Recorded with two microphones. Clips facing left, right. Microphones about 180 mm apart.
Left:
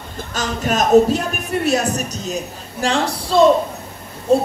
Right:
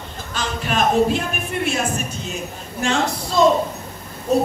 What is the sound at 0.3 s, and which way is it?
Speech, 40° left (ahead or behind).